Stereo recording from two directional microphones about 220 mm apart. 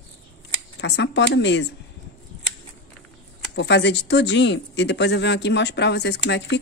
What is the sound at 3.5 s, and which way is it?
Speech, 50° left (ahead or behind).